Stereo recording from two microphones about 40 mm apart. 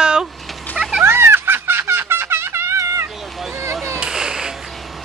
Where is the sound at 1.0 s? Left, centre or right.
Right.